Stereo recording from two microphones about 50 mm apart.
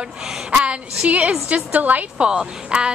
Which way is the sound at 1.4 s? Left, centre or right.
Right.